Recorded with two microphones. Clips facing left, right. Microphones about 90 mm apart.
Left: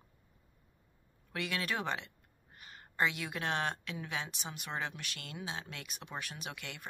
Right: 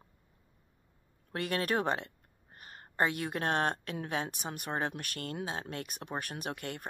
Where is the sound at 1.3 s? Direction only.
45° right (ahead or behind).